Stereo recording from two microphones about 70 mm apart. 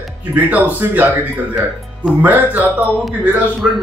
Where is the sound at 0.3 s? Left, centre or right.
Right.